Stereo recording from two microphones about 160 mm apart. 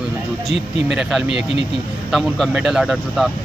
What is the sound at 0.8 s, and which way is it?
Speech, 5° right (ahead or behind).